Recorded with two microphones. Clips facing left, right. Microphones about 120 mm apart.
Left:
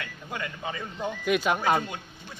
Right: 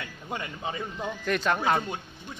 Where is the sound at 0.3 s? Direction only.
30° right (ahead or behind).